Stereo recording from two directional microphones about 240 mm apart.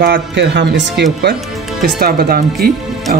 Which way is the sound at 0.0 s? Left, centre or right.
Right.